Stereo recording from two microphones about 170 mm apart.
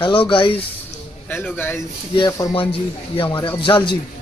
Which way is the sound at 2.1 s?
20° left (ahead or behind).